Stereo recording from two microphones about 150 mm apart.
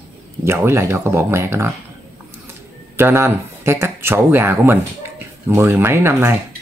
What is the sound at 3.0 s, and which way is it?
Speech, 15° right (ahead or behind).